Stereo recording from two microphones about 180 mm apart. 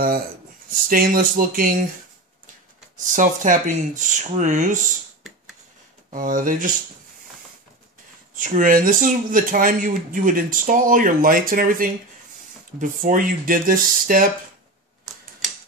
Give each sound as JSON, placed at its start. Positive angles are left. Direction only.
{"t": 0.7, "sound": "speech", "side_deg": -50}
{"t": 3.2, "sound": "speech", "side_deg": -45}
{"t": 6.0, "sound": "speech", "side_deg": -50}
{"t": 8.4, "sound": "speech", "side_deg": -50}